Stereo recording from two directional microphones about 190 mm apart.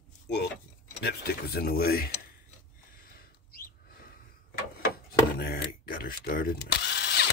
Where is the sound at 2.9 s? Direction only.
50° left (ahead or behind).